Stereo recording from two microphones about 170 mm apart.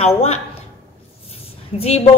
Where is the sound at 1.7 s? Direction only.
40° left (ahead or behind).